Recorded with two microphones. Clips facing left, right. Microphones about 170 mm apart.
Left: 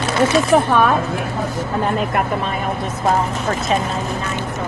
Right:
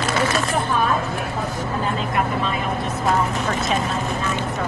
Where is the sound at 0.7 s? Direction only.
70° left (ahead or behind).